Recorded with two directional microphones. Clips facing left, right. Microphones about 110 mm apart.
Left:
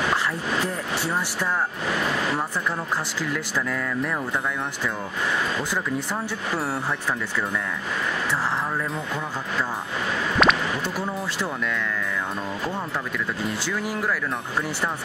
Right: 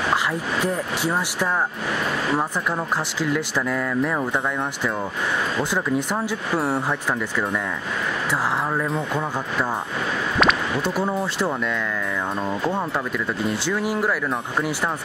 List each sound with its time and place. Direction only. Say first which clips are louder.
3.3 s speech: right 4 dB; 20° right (ahead or behind)
6.7 s speech: right 3 dB; 15° right (ahead or behind)
10.4 s a sound: even; 15° right (ahead or behind)